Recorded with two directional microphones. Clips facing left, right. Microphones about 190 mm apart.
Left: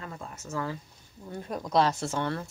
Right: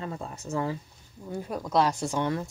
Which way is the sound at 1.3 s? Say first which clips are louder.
Right 1 dB; 5° right (ahead or behind).